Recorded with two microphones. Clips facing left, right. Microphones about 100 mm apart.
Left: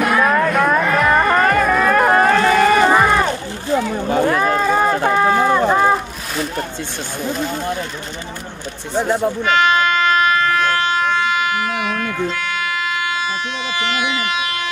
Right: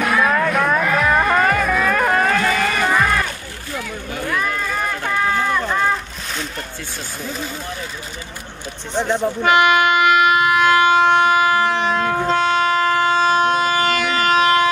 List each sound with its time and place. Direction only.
0.0 s music: 5° left (ahead or behind)
2.3 s run: 30° left (ahead or behind)
2.8 s a sound: 25° left (ahead or behind)
5.0 s run: 40° left (ahead or behind)
8.9 s speech: 10° left (ahead or behind)
9.4 s vehicle: 15° right (ahead or behind)
11.3 s train: 35° right (ahead or behind)